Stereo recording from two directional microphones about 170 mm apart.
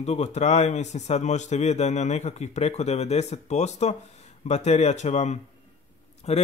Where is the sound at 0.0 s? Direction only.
40° left (ahead or behind).